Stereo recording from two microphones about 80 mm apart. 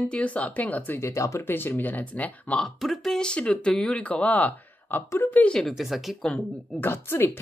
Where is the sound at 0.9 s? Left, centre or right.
Left.